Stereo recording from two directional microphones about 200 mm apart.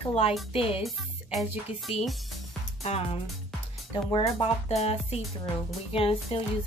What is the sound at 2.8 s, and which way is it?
Speech, 30° left (ahead or behind).